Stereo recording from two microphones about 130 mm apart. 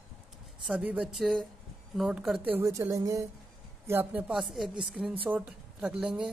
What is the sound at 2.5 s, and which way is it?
Speech, 20° right (ahead or behind).